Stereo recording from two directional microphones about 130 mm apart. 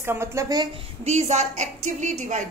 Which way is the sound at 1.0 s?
60° right (ahead or behind).